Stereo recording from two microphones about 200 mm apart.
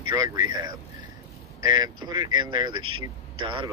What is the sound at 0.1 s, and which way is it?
Speech, 20° right (ahead or behind).